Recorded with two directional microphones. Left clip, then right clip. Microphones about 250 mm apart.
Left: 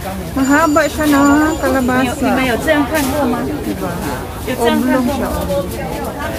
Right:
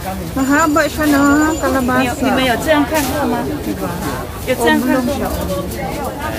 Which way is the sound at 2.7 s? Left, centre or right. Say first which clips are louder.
Even; right.